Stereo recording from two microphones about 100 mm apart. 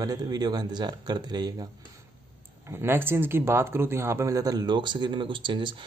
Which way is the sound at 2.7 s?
25° right (ahead or behind).